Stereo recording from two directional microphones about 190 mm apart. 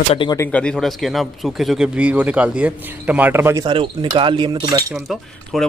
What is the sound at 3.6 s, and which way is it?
Speech, 25° right (ahead or behind).